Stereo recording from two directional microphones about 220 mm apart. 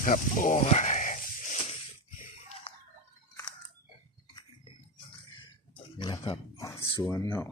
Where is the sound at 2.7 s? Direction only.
25° left (ahead or behind).